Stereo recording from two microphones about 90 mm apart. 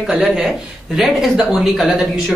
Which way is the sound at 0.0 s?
5° right (ahead or behind).